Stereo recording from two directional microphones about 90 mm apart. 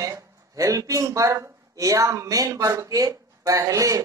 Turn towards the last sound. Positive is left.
turn(degrees=-40)  # may be behind; listen again after turning